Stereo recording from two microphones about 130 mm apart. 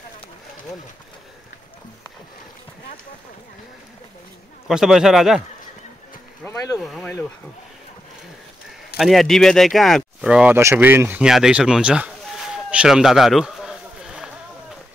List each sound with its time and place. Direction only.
4.6 s speech: 5° right (ahead or behind)
6.4 s a sound: 25° left (ahead or behind)
6.8 s speech: centre (ahead or behind)
8.9 s speech: centre (ahead or behind)
10.5 s speech: 20° right (ahead or behind)